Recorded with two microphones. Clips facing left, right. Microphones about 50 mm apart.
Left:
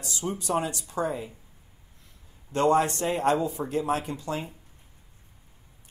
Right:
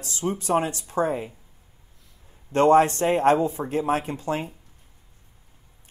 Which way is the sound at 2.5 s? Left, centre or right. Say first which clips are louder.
Right 5 dB; right.